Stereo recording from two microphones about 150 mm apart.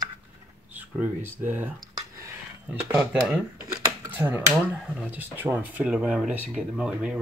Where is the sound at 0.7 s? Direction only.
10° right (ahead or behind).